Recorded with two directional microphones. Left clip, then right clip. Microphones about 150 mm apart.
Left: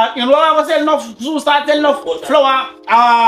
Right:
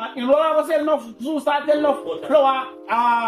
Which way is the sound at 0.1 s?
20° left (ahead or behind).